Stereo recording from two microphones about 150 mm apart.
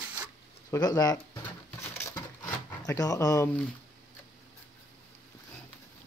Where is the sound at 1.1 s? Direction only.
15° left (ahead or behind).